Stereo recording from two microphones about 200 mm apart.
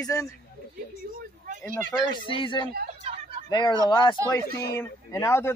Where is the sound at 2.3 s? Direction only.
25° left (ahead or behind).